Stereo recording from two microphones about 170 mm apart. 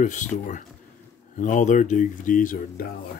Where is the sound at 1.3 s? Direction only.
50° left (ahead or behind).